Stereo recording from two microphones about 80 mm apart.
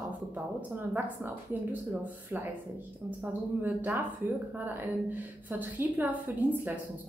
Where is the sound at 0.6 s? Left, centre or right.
Right.